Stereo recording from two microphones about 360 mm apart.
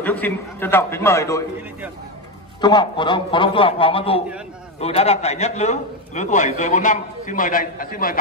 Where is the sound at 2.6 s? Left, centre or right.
Centre.